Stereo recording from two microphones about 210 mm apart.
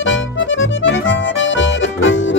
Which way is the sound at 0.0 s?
65° left (ahead or behind).